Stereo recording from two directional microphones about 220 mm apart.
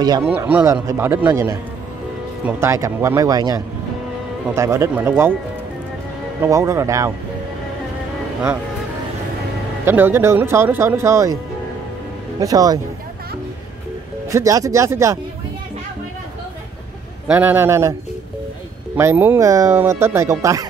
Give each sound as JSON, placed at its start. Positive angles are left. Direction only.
{"t": 0.0, "sound": "speech", "side_deg": -20}
{"t": 0.3, "sound": "speech", "side_deg": -5}
{"t": 6.4, "sound": "speech", "side_deg": -15}
{"t": 9.8, "sound": "speech", "side_deg": -10}
{"t": 12.4, "sound": "speech", "side_deg": -15}
{"t": 14.3, "sound": "speech", "side_deg": -15}
{"t": 17.3, "sound": "speech", "side_deg": -10}
{"t": 18.9, "sound": "speech", "side_deg": -10}